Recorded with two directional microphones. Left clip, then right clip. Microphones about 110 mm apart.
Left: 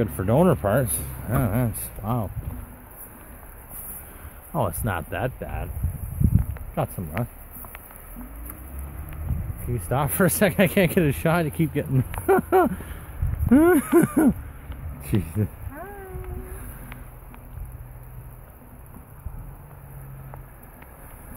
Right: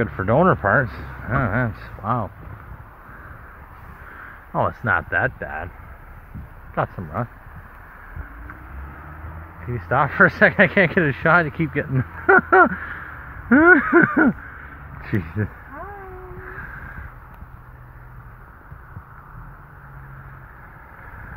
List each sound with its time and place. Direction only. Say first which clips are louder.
0.0 s speech: right 4 dB; 25° left (ahead or behind)
4.6 s speech: right 7 dB; 30° left (ahead or behind)
6.8 s speech: right 4 dB; 25° left (ahead or behind)
9.8 s speech: right 8 dB; 20° left (ahead or behind)
15.1 s speech: right 1 dB; 45° left (ahead or behind)